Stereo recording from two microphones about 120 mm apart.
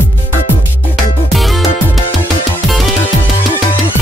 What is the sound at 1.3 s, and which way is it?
Music, centre (ahead or behind).